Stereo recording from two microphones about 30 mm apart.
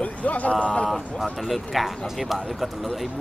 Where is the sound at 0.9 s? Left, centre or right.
Centre.